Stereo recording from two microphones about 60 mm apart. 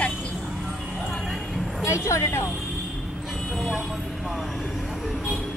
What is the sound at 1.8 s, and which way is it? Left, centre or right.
Speech, left.